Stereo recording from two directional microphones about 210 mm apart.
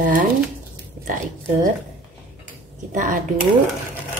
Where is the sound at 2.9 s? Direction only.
40° right (ahead or behind).